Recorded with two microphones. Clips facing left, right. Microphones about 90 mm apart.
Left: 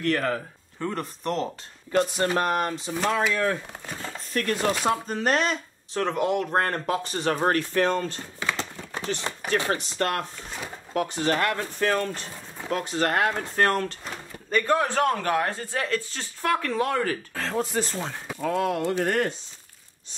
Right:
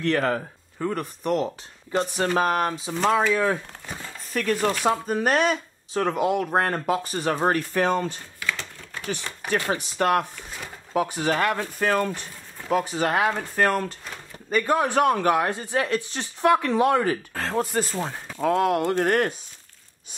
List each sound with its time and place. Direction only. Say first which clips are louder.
0.0 s speech: right 2 dB; 25° right (ahead or behind)
0.7 s speech: right 3 dB; 10° right (ahead or behind)
8.4 s a sound: left 3 dB; 25° left (ahead or behind)
9.7 s speech: right 4 dB; 10° right (ahead or behind)
17.3 s speech: right 2 dB; 5° right (ahead or behind)
18.7 s speech: right 3 dB; 60° right (ahead or behind)